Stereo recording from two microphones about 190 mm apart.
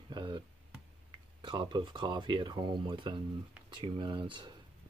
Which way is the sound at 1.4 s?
25° right (ahead or behind).